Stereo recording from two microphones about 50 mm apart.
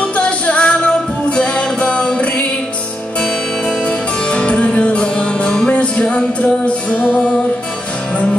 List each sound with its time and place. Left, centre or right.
0.0 s music: left